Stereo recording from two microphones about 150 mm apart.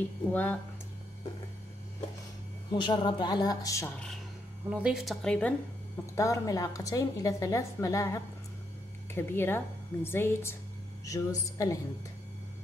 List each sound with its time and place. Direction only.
0.3 s speech: 10° left (ahead or behind)
2.7 s a woman's voice: 30° left (ahead or behind)
4.6 s a woman's voice: 5° right (ahead or behind)
6.1 s a woman's voice: 20° left (ahead or behind)